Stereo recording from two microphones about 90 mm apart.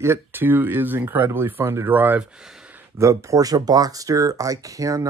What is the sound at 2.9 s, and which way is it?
Speech, 35° right (ahead or behind).